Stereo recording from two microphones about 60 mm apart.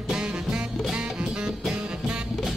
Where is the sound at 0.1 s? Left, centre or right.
Centre.